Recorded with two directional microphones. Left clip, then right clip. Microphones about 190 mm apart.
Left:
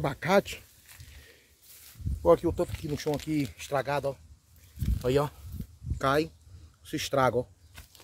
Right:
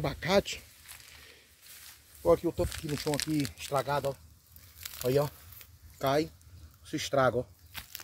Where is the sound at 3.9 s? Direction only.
25° left (ahead or behind).